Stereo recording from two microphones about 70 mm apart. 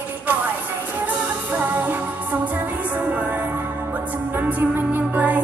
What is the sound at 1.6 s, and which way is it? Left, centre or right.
Music, right.